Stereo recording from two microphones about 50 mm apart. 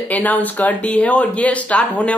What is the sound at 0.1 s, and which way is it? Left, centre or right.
A man's voice, left.